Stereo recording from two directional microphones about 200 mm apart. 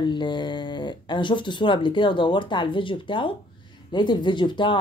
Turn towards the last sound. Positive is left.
turn(degrees=25)  # may be behind; listen again after turning